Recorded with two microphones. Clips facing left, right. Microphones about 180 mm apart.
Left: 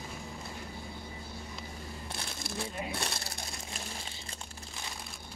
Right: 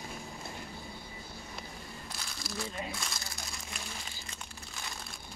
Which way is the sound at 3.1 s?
30° left (ahead or behind).